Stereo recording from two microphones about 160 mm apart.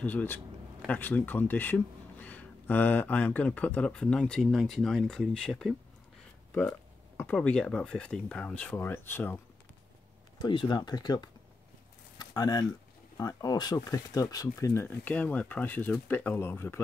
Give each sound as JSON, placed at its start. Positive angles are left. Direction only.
{"t": 0.0, "sound": "speech", "side_deg": 10}
{"t": 7.2, "sound": "speech", "side_deg": 10}
{"t": 10.4, "sound": "speech", "side_deg": 30}